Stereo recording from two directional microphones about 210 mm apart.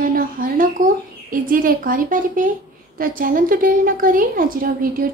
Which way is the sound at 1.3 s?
40° right (ahead or behind).